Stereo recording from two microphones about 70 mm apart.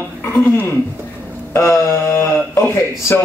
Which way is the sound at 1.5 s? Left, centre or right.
Left.